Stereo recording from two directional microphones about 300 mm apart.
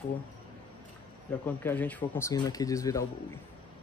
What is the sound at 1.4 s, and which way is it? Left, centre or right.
Speech, centre.